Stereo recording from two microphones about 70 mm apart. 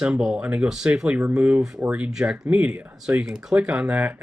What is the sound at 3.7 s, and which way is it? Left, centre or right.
Speech, right.